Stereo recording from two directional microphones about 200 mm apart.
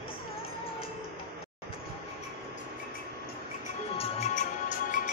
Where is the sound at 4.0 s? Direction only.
35° left (ahead or behind).